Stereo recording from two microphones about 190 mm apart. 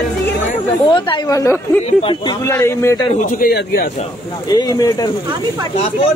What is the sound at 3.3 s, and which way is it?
Speech, 50° left (ahead or behind).